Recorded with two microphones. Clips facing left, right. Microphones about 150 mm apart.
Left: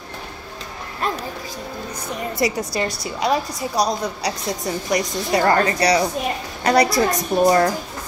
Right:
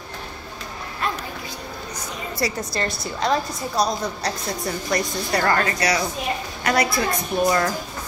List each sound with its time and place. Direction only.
2.3 s a woman's voice: 15° left (ahead or behind)
5.5 s a woman's voice: 30° left (ahead or behind)